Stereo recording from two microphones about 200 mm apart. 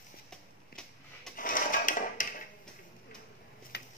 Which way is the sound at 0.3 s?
5° left (ahead or behind).